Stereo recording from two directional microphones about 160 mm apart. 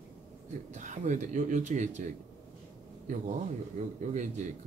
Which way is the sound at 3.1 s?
50° right (ahead or behind).